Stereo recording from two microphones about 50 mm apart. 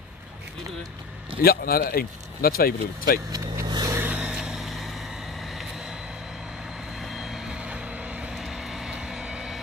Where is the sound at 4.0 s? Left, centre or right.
Right.